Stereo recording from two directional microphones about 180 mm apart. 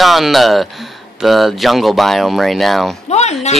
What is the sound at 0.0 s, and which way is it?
Speech, centre (ahead or behind).